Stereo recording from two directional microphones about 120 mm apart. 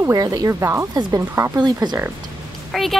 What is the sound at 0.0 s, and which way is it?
Speech, 30° right (ahead or behind).